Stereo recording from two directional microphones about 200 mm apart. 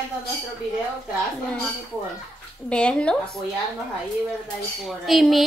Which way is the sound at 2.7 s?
5° left (ahead or behind).